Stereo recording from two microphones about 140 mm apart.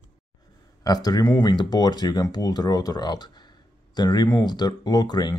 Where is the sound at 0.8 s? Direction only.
25° left (ahead or behind).